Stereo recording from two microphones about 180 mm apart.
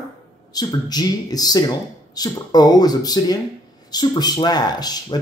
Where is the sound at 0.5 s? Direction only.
20° left (ahead or behind).